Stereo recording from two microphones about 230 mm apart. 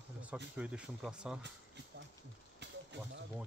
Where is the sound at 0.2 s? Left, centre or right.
Centre.